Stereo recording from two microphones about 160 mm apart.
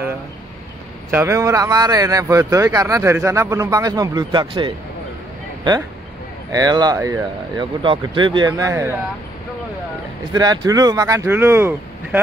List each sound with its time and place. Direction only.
1.1 s speech: 15° right (ahead or behind)
6.5 s speech: 25° right (ahead or behind)
7.8 s speech: 30° right (ahead or behind)
10.3 s speech: 25° right (ahead or behind)